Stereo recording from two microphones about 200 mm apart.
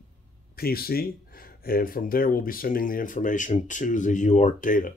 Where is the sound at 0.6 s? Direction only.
50° left (ahead or behind).